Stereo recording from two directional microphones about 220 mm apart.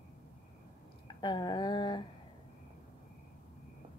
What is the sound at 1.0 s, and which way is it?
Speech, 20° left (ahead or behind).